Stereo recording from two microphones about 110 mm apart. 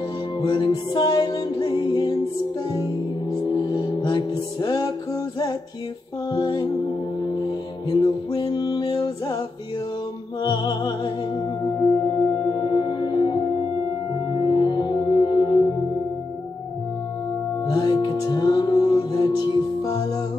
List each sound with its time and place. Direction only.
0.4 s music: 40° left (ahead or behind)
6.3 s music: 40° left (ahead or behind)
8.0 s music: 35° left (ahead or behind)
10.4 s music: 40° left (ahead or behind)
17.6 s music: 40° left (ahead or behind)